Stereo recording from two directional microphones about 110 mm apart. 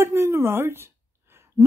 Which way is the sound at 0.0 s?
25° right (ahead or behind).